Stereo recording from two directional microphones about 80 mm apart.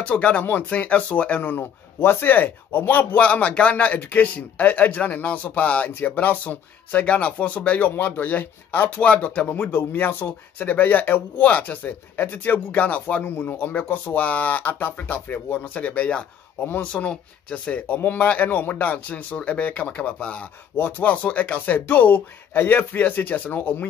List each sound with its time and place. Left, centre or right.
0.0 s chopping: centre